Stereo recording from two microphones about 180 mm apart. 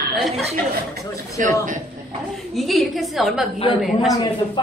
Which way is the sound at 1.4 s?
45° right (ahead or behind).